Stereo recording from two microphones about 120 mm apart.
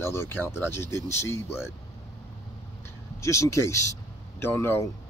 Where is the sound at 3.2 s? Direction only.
25° left (ahead or behind).